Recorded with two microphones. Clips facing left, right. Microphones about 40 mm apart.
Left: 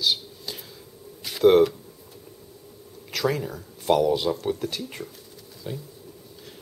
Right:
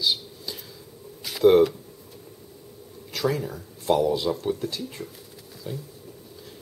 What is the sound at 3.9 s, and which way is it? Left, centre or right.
Speech, left.